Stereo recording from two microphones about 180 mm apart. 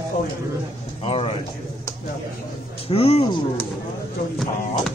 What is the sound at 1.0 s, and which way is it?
Speech, 30° left (ahead or behind).